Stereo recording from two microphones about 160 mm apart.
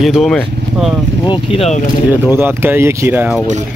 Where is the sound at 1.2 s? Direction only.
40° left (ahead or behind).